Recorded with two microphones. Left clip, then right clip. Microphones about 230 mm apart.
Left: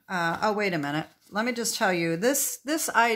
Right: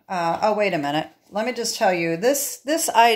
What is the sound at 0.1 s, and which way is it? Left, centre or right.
A woman's voice, left.